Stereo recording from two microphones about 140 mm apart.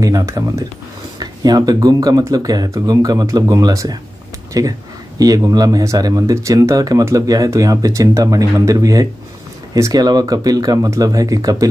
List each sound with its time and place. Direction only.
0.0 s speech: 25° right (ahead or behind)